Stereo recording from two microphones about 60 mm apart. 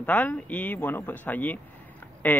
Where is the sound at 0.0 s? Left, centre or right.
Left.